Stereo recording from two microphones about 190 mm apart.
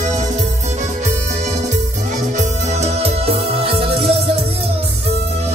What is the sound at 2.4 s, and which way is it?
Music, 35° right (ahead or behind).